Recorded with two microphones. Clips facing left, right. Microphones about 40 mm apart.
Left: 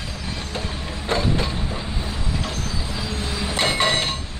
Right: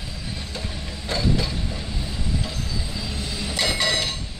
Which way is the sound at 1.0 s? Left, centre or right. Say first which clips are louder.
Left 2 dB; left.